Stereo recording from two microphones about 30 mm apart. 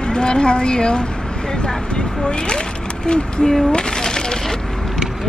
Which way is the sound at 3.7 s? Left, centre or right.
Left.